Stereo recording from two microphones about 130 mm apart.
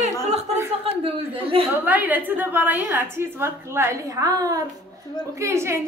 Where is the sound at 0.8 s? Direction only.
45° right (ahead or behind).